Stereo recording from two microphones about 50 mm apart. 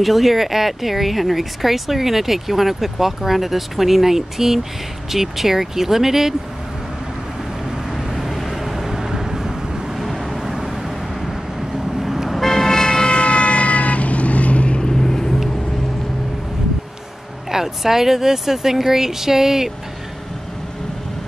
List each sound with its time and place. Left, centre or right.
0.0 s speech: centre
8.1 s vehicle: centre
12.0 s vehicle: centre; by 14.8 s left
14.8 s vehicle: centre
17.5 s speech: centre